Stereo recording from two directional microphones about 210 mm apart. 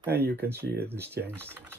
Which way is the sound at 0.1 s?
50° right (ahead or behind).